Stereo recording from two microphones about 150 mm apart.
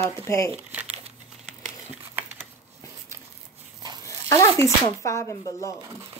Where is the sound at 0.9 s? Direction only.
45° right (ahead or behind).